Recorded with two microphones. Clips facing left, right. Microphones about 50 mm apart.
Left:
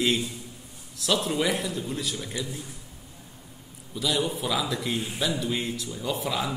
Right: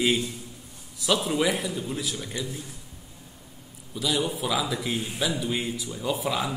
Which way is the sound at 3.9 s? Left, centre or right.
Centre.